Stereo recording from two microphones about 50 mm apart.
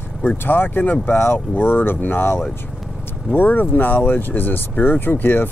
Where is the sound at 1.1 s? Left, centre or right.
Left.